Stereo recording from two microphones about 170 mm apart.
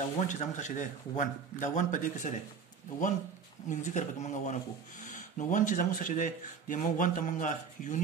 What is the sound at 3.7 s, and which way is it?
Speech, 45° left (ahead or behind).